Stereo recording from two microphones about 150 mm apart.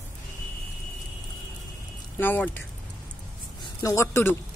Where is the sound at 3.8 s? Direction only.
20° left (ahead or behind).